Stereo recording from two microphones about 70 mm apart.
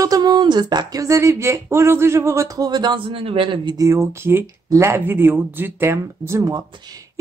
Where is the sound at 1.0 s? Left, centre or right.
Right.